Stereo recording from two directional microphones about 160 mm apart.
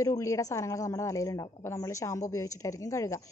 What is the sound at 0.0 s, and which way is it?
A woman's voice, 20° left (ahead or behind).